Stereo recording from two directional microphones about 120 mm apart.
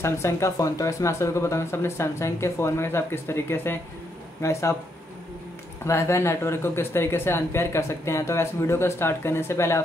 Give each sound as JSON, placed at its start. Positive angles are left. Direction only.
{"t": 0.0, "sound": "speech", "side_deg": 25}
{"t": 5.9, "sound": "speech", "side_deg": 25}